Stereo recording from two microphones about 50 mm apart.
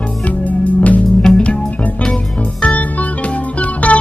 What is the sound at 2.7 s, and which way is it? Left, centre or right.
Music, left.